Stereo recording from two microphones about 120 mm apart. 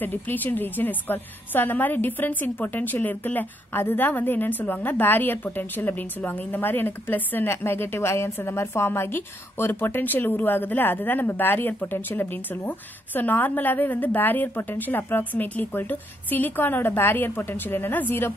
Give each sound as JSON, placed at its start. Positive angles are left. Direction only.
{"t": 0.0, "sound": "a woman's voice", "side_deg": 15}